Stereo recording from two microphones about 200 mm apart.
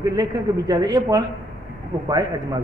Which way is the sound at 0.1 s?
20° right (ahead or behind).